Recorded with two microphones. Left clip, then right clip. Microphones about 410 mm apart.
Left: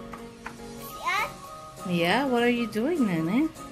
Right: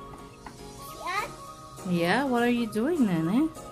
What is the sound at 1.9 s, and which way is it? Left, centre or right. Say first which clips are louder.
Speech: left 1 dB; centre.